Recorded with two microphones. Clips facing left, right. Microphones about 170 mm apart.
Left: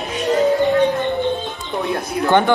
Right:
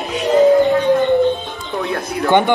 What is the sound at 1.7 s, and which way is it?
Music, 20° left (ahead or behind).